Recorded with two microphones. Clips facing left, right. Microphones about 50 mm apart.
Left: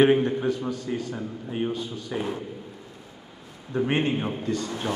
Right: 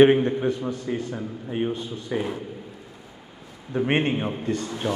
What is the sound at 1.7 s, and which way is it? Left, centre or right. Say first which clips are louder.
Speech: right 1 dB; right.